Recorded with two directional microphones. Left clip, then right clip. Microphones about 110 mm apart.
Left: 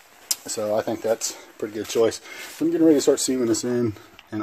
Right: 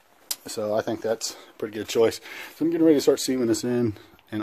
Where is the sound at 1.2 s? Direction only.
Centre (ahead or behind).